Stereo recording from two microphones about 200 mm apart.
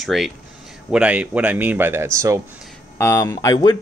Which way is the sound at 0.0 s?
Centre (ahead or behind).